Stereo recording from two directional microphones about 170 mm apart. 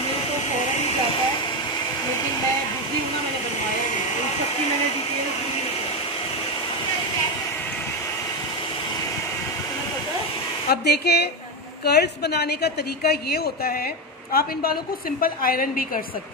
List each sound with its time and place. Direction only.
10.7 s a woman's voice: 70° left (ahead or behind); by 15.8 s 55° left (ahead or behind)